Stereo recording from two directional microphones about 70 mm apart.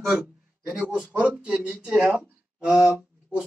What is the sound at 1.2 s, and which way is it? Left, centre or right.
Speech, centre.